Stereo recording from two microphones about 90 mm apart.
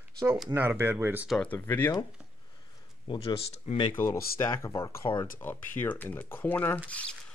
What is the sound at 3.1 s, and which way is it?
Speech, 60° left (ahead or behind).